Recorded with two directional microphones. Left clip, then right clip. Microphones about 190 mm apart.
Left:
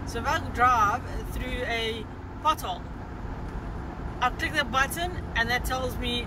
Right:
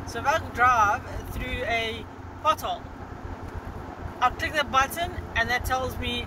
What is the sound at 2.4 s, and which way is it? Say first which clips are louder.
Speech: right 2 dB; 15° left (ahead or behind).